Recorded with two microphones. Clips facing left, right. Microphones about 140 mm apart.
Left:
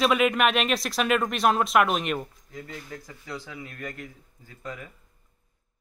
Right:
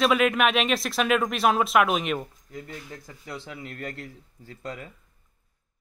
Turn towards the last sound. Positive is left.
turn(degrees=-30)  # may be behind; listen again after turning